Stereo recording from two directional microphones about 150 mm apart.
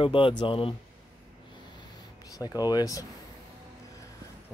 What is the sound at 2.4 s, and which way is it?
Speech, 25° left (ahead or behind).